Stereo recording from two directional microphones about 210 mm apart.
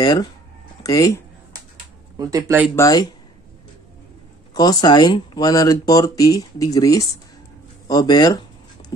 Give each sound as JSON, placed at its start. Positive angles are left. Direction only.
{"t": 0.0, "sound": "speech", "side_deg": 20}
{"t": 2.1, "sound": "speech", "side_deg": -15}
{"t": 2.7, "sound": "speech", "side_deg": 15}
{"t": 4.6, "sound": "speech", "side_deg": 20}